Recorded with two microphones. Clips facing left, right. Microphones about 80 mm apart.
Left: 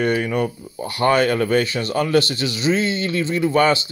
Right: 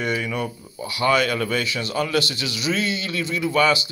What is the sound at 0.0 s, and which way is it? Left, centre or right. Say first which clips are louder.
A man's voice: left 5 dB; left.